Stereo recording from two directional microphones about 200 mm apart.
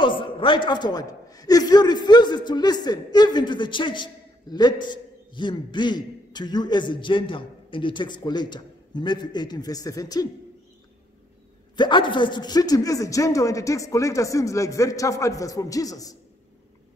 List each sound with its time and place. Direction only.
0.0 s a man's voice: 25° left (ahead or behind)
11.7 s a man's voice: 20° left (ahead or behind)